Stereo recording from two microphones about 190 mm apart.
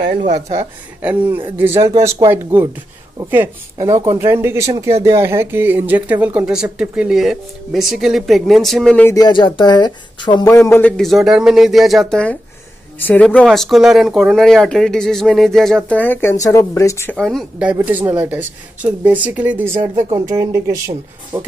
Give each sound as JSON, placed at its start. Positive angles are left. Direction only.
{"t": 0.3, "sound": "speech", "side_deg": -20}
{"t": 9.1, "sound": "speech", "side_deg": 20}
{"t": 10.7, "sound": "speech", "side_deg": 10}
{"t": 17.2, "sound": "speech", "side_deg": 0}